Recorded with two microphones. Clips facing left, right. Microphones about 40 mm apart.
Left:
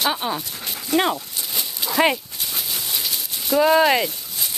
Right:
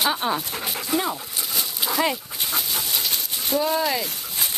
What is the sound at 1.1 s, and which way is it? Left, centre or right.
Dog, centre.